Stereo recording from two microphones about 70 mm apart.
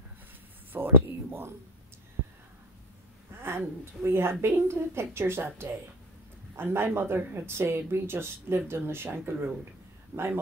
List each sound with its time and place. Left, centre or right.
0.7 s speech: right
3.4 s speech: right